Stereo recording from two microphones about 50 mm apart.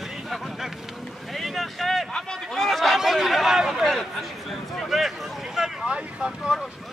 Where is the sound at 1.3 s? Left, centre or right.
Centre.